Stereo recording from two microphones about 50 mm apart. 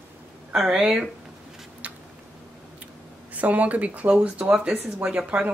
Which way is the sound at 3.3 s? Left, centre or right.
Right.